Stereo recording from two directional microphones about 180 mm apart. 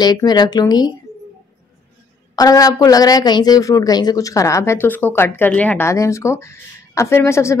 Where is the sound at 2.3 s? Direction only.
20° left (ahead or behind).